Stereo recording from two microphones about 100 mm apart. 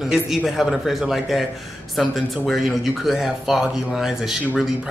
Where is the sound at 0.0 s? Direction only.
5° right (ahead or behind).